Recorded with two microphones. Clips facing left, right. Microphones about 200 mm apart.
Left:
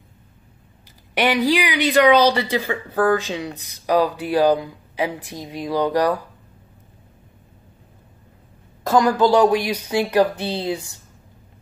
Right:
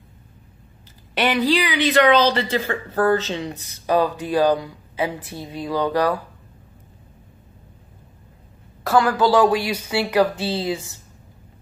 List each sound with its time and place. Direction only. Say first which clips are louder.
1.1 s speech: left 1 dB; 15° left (ahead or behind)
8.8 s speech: left 1 dB; 15° left (ahead or behind)